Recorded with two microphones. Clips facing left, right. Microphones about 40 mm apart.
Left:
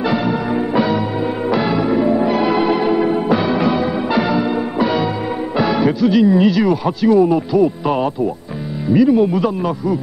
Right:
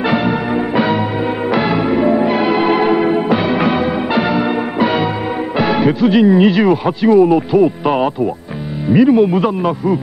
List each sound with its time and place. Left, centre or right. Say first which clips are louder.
1.5 s music: right 1 dB; right
5.6 s speech: right 2 dB; right